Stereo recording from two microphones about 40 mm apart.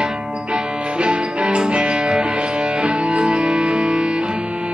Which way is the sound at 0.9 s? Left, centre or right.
Right.